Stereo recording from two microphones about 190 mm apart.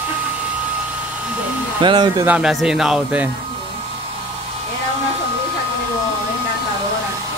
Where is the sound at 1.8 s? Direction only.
25° right (ahead or behind).